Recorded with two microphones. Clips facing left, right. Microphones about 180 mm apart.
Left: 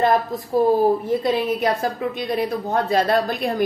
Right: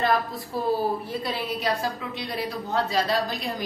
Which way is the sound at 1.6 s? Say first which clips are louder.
Left 6 dB; 50° left (ahead or behind).